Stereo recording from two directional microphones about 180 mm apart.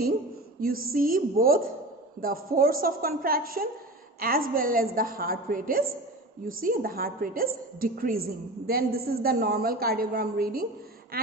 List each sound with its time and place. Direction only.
0.6 s a woman's voice: 55° right (ahead or behind)